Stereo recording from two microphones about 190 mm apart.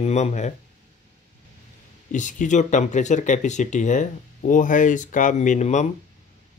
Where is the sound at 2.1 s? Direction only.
40° left (ahead or behind).